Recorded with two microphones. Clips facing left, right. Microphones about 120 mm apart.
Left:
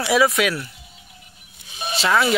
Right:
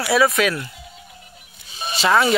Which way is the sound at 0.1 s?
10° left (ahead or behind).